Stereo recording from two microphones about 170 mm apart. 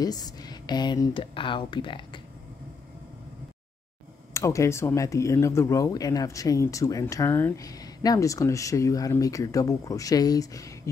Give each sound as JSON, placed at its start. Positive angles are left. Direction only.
{"t": 0.0, "sound": "speech", "side_deg": 20}
{"t": 4.3, "sound": "speech", "side_deg": 20}